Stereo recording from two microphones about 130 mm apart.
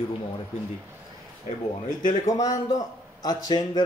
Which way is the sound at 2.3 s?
25° left (ahead or behind).